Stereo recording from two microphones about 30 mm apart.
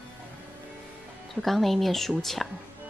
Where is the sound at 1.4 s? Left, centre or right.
Centre.